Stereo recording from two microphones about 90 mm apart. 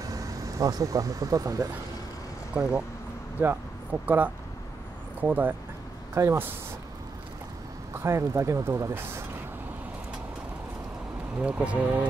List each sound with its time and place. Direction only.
0.0 s speech: 40° right (ahead or behind)
2.6 s speech: 20° right (ahead or behind)
6.1 s speech: 35° right (ahead or behind)
7.9 s speech: 30° right (ahead or behind)
11.3 s speech: 10° right (ahead or behind)